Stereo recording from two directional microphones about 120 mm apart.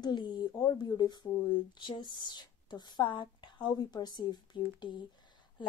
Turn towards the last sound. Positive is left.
turn(degrees=35)  # may be behind; listen again after turning